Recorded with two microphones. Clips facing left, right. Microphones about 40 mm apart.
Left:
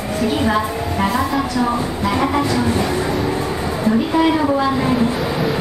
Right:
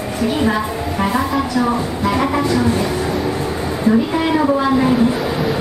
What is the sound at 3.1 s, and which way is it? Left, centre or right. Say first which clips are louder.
Train: even; centre.